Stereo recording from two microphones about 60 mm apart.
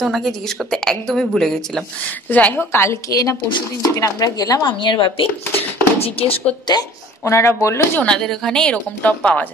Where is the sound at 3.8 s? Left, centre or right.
Left.